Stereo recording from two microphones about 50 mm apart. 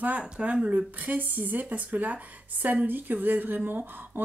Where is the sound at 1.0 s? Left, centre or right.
Right.